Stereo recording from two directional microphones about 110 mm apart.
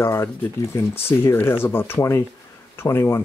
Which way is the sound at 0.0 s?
20° left (ahead or behind).